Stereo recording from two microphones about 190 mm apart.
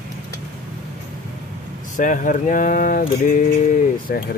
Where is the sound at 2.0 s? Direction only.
45° left (ahead or behind).